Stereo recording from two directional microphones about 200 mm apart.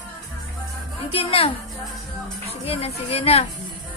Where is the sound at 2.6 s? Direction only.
30° left (ahead or behind).